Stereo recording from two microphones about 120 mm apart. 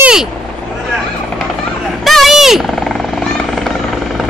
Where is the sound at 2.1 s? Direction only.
Centre (ahead or behind).